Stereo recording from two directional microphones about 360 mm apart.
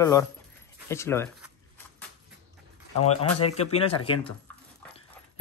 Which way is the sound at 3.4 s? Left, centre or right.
Centre.